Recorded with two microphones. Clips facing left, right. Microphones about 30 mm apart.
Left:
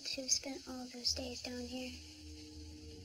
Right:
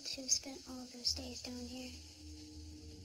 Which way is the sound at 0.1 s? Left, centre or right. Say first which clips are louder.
Left 2 dB; left.